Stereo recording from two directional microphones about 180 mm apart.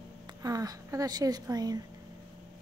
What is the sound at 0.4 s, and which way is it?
A woman's voice, 20° right (ahead or behind).